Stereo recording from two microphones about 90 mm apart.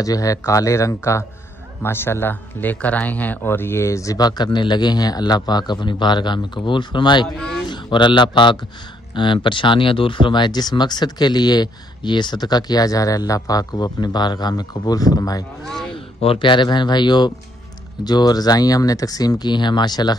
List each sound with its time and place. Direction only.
0.0 s speech: 40° left (ahead or behind)
15.9 s speech: 80° left; by 20.2 s 50° left (ahead or behind)